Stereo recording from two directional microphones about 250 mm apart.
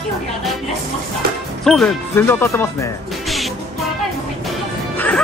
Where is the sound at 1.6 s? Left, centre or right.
Centre.